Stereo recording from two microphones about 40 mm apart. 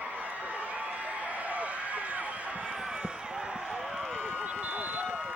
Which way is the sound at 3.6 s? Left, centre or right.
Centre.